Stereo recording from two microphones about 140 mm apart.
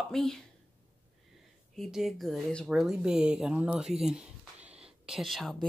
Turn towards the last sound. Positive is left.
turn(degrees=0)  # may be behind; listen again after turning